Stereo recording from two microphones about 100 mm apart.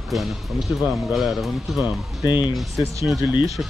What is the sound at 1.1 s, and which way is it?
Speech, centre (ahead or behind).